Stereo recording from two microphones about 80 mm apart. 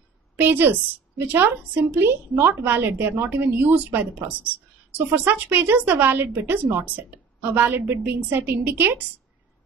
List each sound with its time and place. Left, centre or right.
0.4 s a woman's voice: right